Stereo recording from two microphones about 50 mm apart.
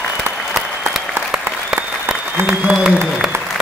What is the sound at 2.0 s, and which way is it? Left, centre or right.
Applause, right.